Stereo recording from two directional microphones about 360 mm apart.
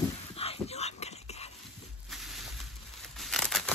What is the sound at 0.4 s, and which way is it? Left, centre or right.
Dog, centre.